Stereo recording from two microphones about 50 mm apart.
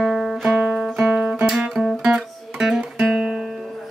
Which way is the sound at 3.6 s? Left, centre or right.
Centre.